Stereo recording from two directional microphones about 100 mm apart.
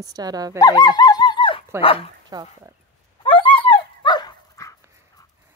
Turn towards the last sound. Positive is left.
turn(degrees=40)  # may be behind; listen again after turning